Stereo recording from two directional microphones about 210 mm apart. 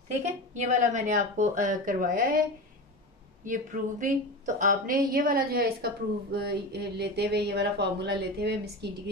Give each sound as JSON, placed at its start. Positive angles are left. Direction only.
{"t": 0.2, "sound": "a woman's voice", "side_deg": -35}
{"t": 3.4, "sound": "a woman's voice", "side_deg": -40}